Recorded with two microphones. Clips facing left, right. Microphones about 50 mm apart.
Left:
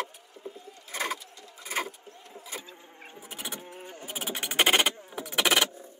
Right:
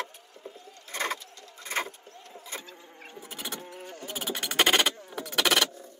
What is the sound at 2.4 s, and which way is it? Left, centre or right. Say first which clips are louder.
Insect: even; centre.